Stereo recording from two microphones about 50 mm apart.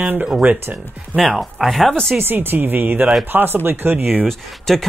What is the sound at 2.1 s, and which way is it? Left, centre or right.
Speech, right.